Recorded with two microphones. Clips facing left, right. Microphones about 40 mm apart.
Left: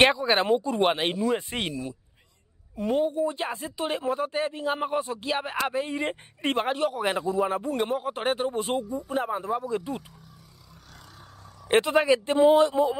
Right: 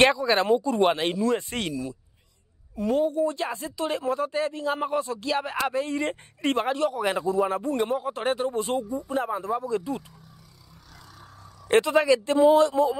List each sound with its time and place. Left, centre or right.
0.0 s speech: left
1.7 s a woman's voice: left; by 7.7 s centre
8.0 s speech: left
9.1 s speech: left
11.6 s speech: left